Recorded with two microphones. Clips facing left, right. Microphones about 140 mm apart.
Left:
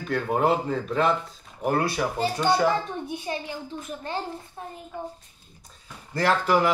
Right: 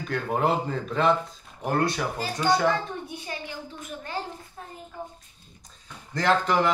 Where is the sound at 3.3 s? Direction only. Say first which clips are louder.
Left 6 dB; 25° left (ahead or behind).